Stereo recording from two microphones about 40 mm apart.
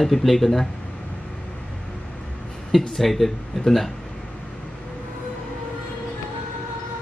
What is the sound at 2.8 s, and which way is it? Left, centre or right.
Speech, centre.